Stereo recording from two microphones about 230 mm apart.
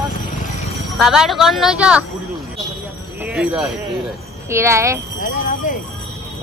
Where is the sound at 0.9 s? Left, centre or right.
Centre.